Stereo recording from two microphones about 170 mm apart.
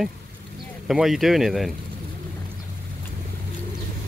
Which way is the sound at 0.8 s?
Centre (ahead or behind).